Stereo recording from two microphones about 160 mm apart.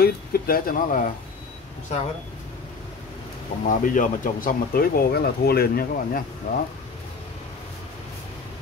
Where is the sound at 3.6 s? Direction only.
55° left (ahead or behind).